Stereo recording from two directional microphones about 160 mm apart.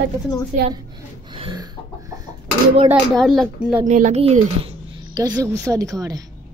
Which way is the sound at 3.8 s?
50° right (ahead or behind).